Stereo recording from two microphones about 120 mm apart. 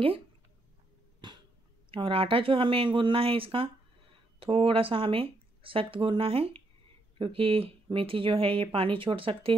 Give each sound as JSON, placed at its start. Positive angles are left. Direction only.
{"t": 1.2, "sound": "cough", "side_deg": -40}
{"t": 1.9, "sound": "speech", "side_deg": -45}